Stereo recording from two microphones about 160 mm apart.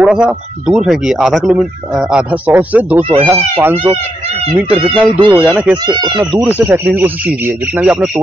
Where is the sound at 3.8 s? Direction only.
40° right (ahead or behind).